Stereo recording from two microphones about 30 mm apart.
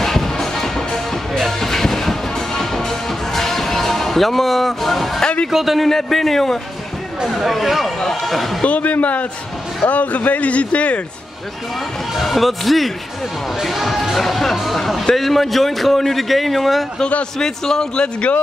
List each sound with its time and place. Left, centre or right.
0.0 s music: centre
5.5 s speech: centre
5.9 s a man's voice: centre
7.2 s a man's voice: centre
8.6 s a man's voice: left
12.2 s a man's voice: centre
17.4 s a man's voice: left